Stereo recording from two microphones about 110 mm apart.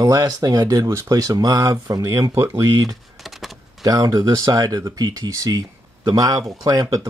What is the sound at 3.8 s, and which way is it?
Speech, 35° right (ahead or behind).